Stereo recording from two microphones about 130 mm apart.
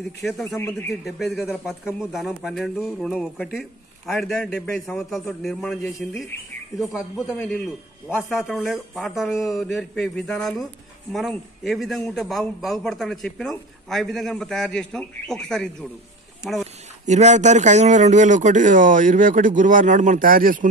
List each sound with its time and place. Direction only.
0.2 s a man's voice: centre (ahead or behind)
0.6 s speech: 20° left (ahead or behind)
1.0 s a man's voice: centre (ahead or behind)
8.3 s a man's voice: 5° right (ahead or behind)
17.0 s speech: 65° right (ahead or behind); by 20.6 s 90° right